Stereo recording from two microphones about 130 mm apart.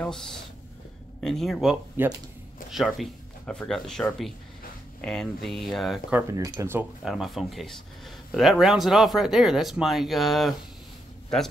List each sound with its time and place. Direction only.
0.0 s speech: 5° left (ahead or behind)
6.3 s speech: 25° right (ahead or behind)
7.1 s speech: centre (ahead or behind)